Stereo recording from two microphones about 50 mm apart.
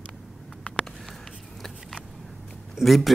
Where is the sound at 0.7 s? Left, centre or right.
Left.